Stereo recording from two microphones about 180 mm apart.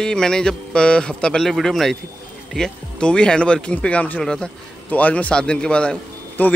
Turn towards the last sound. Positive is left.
turn(degrees=5)  # may be behind; listen again after turning